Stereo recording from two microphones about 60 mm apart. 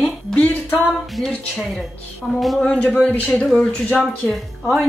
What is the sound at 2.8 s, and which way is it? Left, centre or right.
Speech, left.